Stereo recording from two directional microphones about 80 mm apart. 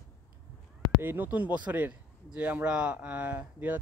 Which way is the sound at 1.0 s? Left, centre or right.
Right.